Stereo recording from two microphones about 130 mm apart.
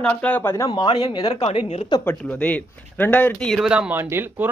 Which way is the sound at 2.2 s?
10° left (ahead or behind).